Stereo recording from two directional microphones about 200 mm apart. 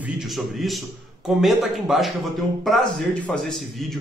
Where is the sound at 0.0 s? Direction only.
Centre (ahead or behind).